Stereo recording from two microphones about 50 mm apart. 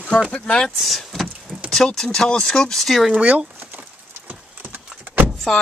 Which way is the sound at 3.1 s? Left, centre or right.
Right.